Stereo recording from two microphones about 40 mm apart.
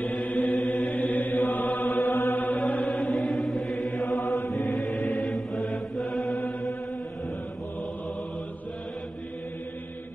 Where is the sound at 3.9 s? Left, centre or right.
Left.